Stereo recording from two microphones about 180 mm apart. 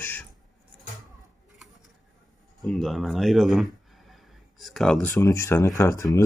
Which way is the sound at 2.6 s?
Centre (ahead or behind).